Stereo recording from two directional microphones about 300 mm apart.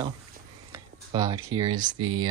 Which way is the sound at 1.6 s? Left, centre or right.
Centre.